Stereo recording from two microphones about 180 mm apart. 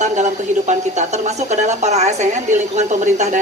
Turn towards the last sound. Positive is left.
turn(degrees=-40)  # may be behind; listen again after turning